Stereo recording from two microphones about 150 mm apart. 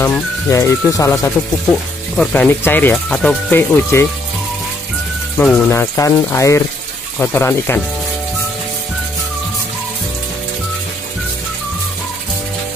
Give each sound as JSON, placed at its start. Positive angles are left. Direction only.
{"t": 0.0, "sound": "speech", "side_deg": 20}
{"t": 2.1, "sound": "speech", "side_deg": 10}
{"t": 5.4, "sound": "speech", "side_deg": 15}